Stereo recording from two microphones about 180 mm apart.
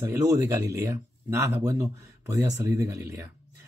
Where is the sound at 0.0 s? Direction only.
15° right (ahead or behind).